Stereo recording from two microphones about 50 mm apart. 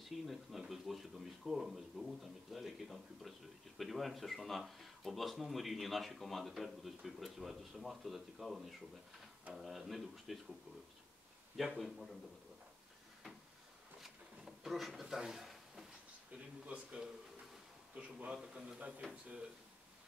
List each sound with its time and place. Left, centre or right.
0.0 s speech: centre
11.8 s speech: centre
14.0 s a sound: centre
15.0 s speech: centre
16.3 s speech: right
18.4 s a man's voice: centre
18.8 s speech: right